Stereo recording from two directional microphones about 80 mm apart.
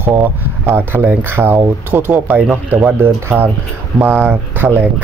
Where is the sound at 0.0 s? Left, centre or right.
Right.